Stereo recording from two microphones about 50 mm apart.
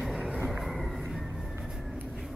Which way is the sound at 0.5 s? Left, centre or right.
Centre.